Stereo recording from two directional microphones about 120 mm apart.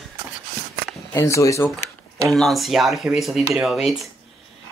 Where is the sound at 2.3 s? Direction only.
Centre (ahead or behind).